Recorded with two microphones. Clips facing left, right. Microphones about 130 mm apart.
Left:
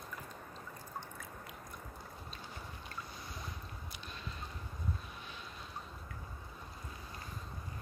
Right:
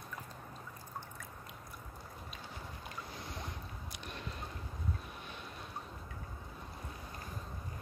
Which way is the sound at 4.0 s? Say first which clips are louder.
Right 6 dB; 65° right (ahead or behind).